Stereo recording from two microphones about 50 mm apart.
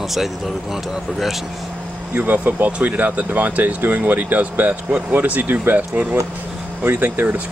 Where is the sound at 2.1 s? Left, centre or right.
Right.